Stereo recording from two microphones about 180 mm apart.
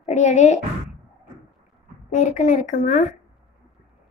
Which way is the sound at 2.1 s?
45° left (ahead or behind).